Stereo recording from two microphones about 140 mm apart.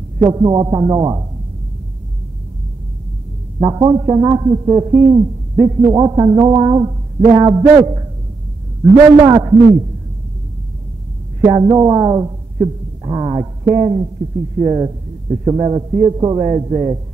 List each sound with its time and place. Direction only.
0.2 s a man's voice: 30° right (ahead or behind)
3.5 s a man's voice: 30° right (ahead or behind)
11.4 s a man's voice: 30° right (ahead or behind)